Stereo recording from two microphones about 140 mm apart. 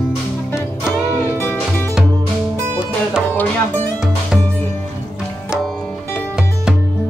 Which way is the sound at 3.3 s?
15° left (ahead or behind).